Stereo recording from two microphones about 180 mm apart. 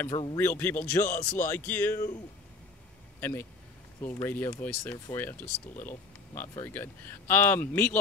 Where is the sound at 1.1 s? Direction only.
45° left (ahead or behind).